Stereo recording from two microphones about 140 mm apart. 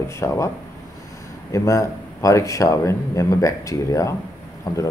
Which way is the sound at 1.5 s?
20° left (ahead or behind).